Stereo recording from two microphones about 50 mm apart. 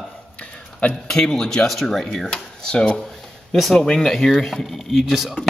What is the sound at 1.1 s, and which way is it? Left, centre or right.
Speech, centre.